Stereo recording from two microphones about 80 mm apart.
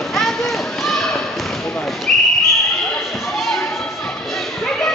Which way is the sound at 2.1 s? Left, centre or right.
Centre.